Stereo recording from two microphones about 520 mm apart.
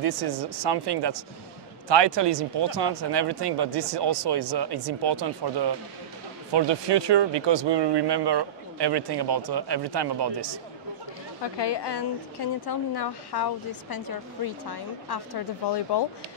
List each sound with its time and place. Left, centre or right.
0.0 s speech: right
11.4 s a woman's voice: left